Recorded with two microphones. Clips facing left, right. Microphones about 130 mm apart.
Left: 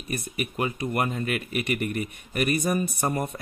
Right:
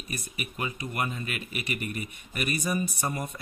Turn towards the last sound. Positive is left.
turn(degrees=55)  # may be behind; listen again after turning